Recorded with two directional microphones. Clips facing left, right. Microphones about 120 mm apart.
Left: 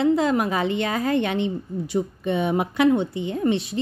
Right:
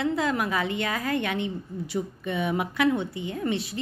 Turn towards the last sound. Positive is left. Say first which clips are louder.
# left 6 dB
turn(degrees=25)  # may be behind; listen again after turning